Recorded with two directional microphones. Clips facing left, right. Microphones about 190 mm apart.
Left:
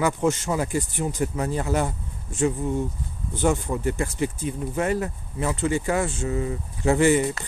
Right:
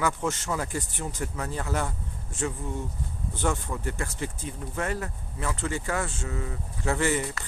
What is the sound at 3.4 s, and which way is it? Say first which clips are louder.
Speech: left 6 dB; 15° left (ahead or behind).